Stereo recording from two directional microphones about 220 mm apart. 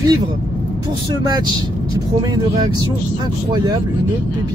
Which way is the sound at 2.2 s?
15° right (ahead or behind).